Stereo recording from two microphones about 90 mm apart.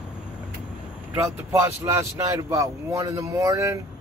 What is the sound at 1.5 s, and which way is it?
A man's voice, 35° right (ahead or behind).